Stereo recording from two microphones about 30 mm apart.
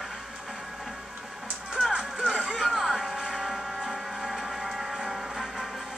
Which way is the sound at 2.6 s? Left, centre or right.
Centre.